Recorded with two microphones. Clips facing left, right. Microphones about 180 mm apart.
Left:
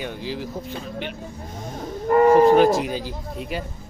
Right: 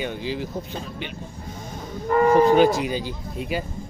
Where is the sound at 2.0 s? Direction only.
35° left (ahead or behind).